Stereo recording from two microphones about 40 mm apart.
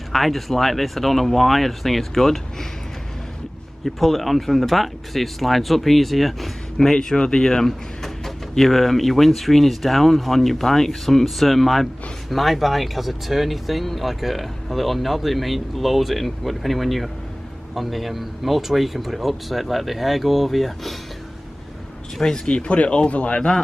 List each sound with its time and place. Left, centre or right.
0.1 s speech: centre
3.8 s speech: centre
6.8 s speech: centre
8.5 s speech: centre
22.2 s speech: centre
22.6 s speech: left